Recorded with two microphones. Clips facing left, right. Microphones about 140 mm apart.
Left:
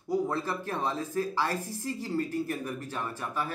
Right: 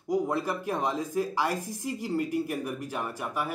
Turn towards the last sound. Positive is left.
turn(degrees=-15)  # may be behind; listen again after turning